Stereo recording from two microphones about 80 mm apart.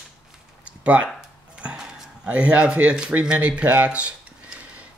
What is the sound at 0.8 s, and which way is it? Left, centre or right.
Speech, centre.